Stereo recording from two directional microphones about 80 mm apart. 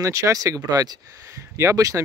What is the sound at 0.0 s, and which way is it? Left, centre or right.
Speech, right.